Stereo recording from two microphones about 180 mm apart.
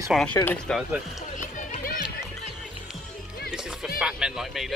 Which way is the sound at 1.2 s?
45° left (ahead or behind).